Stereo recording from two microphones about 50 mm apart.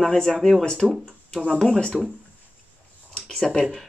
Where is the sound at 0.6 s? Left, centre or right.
Centre.